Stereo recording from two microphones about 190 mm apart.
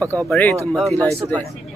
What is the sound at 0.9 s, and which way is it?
Speech, 15° right (ahead or behind).